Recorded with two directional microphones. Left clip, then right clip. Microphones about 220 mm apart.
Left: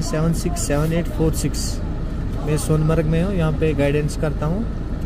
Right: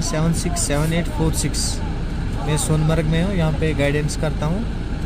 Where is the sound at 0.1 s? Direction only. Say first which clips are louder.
Left 2 dB; 5° left (ahead or behind).